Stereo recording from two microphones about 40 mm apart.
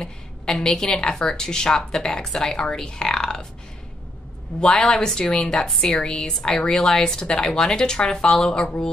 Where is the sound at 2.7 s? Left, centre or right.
Centre.